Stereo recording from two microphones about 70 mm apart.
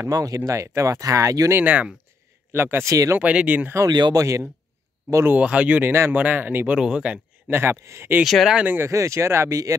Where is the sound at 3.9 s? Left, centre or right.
Right.